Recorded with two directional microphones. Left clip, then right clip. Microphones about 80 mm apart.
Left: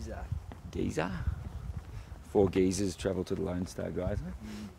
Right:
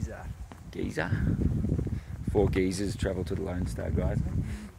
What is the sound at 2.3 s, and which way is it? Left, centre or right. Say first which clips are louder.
Speech: even; left.